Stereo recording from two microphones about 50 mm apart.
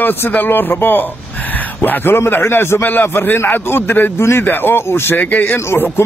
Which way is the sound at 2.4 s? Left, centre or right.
Left.